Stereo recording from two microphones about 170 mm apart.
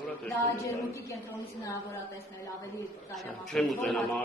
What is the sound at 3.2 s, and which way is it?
A man's voice, centre (ahead or behind).